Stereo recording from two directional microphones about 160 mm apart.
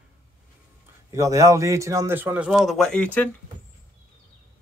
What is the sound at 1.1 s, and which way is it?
A man's voice, 20° right (ahead or behind).